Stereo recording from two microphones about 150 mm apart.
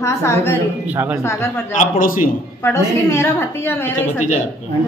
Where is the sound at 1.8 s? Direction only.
65° left (ahead or behind).